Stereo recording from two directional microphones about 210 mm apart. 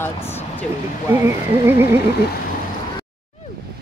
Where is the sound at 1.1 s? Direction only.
10° right (ahead or behind).